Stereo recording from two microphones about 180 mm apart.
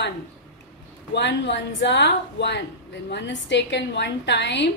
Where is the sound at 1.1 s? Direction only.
75° left (ahead or behind).